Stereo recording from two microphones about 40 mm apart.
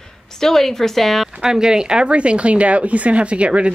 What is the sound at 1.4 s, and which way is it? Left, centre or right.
Speech, centre.